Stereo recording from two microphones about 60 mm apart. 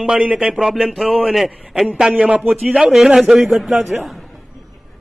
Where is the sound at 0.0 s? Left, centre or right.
Centre.